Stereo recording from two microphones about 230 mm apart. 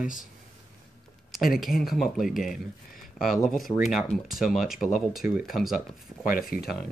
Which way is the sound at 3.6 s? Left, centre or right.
Centre.